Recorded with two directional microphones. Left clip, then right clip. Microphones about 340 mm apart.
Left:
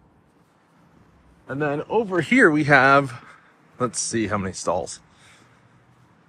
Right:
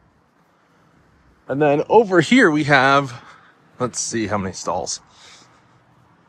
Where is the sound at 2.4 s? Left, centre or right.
Centre.